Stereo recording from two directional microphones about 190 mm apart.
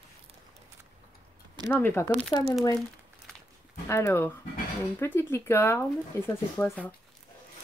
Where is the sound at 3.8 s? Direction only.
15° left (ahead or behind).